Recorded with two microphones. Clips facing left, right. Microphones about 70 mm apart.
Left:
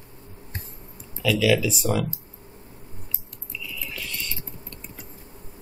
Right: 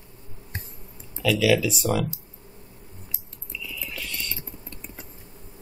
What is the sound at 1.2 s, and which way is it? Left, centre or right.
Speech, centre.